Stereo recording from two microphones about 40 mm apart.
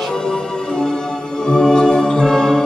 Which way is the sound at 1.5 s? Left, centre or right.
Centre.